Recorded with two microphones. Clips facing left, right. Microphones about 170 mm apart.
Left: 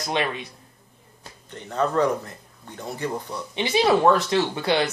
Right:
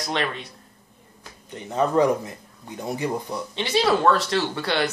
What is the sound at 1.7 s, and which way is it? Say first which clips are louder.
Speech: right 2 dB; 15° right (ahead or behind).